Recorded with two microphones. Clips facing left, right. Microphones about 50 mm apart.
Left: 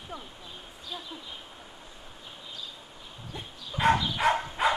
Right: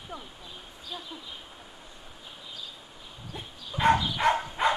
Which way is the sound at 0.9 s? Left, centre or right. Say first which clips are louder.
Even; centre.